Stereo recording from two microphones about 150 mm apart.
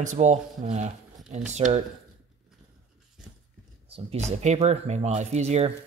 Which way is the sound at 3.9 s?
45° right (ahead or behind).